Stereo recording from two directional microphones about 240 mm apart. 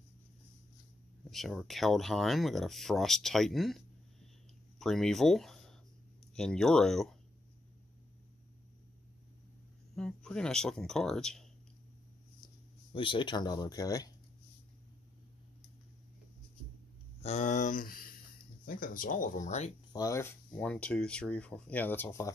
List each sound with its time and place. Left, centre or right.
1.3 s speech: centre
9.9 s speech: centre
12.9 s speech: left
17.2 s speech: left
19.9 s speech: centre